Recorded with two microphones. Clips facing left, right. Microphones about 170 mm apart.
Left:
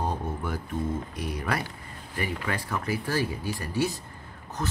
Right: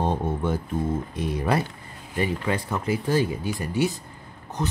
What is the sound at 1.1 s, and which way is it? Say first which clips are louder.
Speech: right 6 dB; 25° right (ahead or behind).